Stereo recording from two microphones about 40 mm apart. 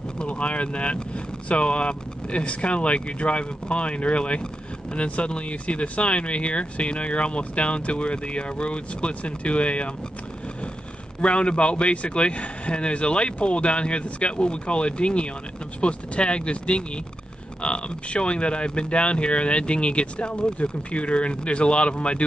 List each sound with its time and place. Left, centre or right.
0.2 s speech: left
11.1 s speech: left